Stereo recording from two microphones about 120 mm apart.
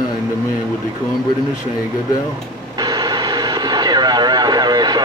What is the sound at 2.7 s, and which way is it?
Radio, 35° right (ahead or behind).